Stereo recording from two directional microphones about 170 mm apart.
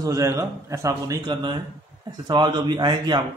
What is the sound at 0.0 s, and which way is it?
A man's voice, 20° right (ahead or behind).